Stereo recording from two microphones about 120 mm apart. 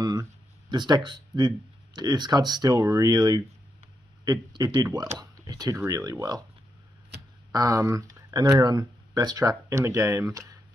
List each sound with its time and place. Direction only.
0.0 s a sound: 35° right (ahead or behind)
2.0 s speech: 35° right (ahead or behind)
7.5 s speech: 30° right (ahead or behind)